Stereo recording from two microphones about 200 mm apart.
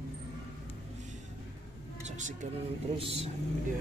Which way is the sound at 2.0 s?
35° right (ahead or behind).